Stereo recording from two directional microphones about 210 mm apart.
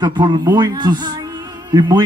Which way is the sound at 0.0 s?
20° right (ahead or behind).